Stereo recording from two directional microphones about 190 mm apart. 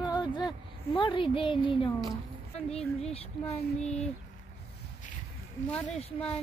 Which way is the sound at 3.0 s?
35° left (ahead or behind).